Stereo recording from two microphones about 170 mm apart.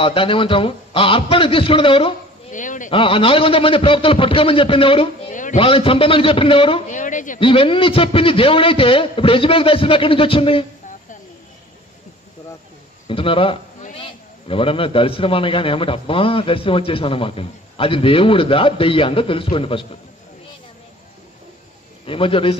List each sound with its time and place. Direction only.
0.0 s a man's voice: 30° left (ahead or behind)
2.5 s a man's voice: 50° left (ahead or behind)
2.9 s a man's voice: 30° left (ahead or behind)
5.3 s a sound: 50° left (ahead or behind)
5.6 s a man's voice: 30° left (ahead or behind)
6.9 s a man's voice: 50° left (ahead or behind)
7.3 s a man's voice: 30° left (ahead or behind)
13.0 s a man's voice: 30° left (ahead or behind)
22.0 s a man's voice: 30° left (ahead or behind)